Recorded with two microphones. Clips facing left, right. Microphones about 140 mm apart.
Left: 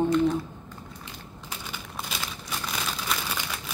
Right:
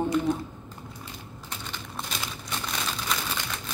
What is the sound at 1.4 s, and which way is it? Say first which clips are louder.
Crumpling: even; 5° left (ahead or behind).